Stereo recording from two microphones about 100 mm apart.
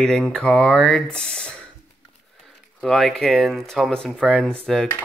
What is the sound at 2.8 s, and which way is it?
Speech, centre (ahead or behind).